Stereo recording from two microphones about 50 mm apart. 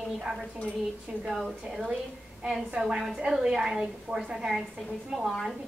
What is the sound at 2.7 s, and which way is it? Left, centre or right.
A woman's voice, centre.